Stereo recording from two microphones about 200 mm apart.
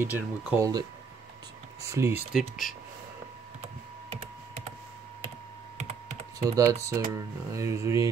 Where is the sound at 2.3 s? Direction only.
Centre (ahead or behind).